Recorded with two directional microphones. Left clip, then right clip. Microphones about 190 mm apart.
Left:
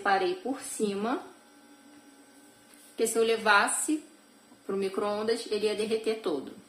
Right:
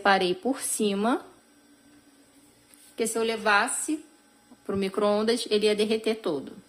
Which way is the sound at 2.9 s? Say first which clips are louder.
Left 1 dB; 35° right (ahead or behind).